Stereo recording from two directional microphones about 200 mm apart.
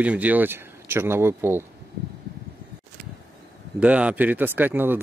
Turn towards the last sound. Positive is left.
turn(degrees=-10)  # may be behind; listen again after turning